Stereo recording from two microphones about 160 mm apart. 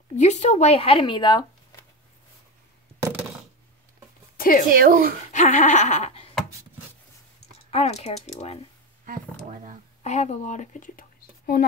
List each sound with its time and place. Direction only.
0.1 s speech: 45° left (ahead or behind); by 1.4 s 30° left (ahead or behind)
4.4 s speech: 60° left (ahead or behind)
4.7 s speech: 65° right (ahead or behind)
5.3 s bleat: 50° left (ahead or behind)
7.7 s speech: 40° left (ahead or behind)
9.0 s speech: 55° right (ahead or behind)
10.0 s speech: 45° left (ahead or behind); by 11.6 s 65° left (ahead or behind)